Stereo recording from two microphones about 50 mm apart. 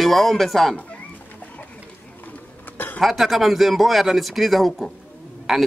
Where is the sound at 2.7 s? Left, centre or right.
Left.